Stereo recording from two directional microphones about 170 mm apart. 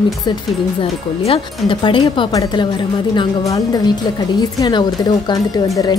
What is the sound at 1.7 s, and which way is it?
A woman's voice, 30° left (ahead or behind).